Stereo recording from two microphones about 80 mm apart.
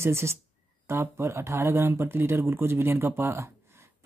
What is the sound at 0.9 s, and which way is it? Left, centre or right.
Speech, right.